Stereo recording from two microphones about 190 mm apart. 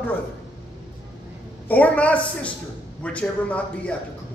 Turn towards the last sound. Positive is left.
turn(degrees=5)  # may be behind; listen again after turning